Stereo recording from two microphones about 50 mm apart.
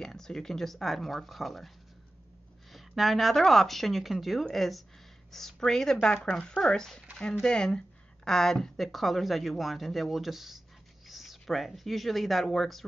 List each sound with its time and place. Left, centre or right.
0.0 s speech: centre
2.7 s a woman's voice: centre